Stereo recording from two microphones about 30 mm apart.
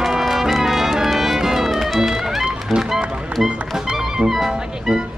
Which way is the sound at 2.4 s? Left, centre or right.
Right.